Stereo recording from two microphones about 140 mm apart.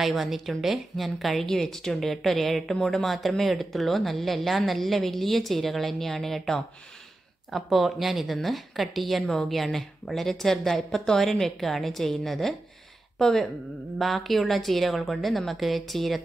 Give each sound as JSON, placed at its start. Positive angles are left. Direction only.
{"t": 0.0, "sound": "a woman's voice", "side_deg": 0}